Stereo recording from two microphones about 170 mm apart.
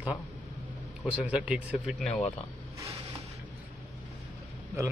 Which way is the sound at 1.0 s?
10° right (ahead or behind).